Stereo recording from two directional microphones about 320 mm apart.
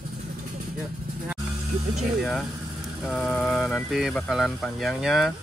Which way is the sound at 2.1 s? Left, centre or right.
Centre.